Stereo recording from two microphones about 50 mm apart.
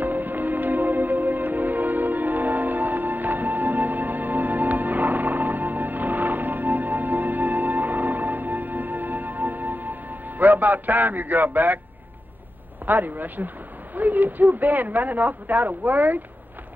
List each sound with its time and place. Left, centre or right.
0.0 s music: right
12.8 s speech: right